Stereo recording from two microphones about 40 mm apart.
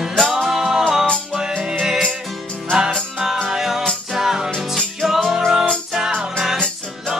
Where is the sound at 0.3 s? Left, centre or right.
Centre.